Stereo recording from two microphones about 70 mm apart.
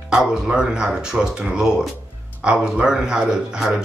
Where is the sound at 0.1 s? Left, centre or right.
Centre.